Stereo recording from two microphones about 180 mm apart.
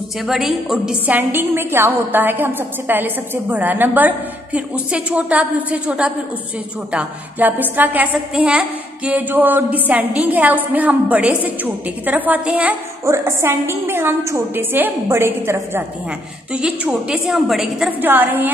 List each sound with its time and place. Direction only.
0.3 s a woman's voice: centre (ahead or behind)